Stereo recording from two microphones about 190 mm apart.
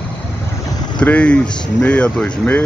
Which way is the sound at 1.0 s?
5° left (ahead or behind).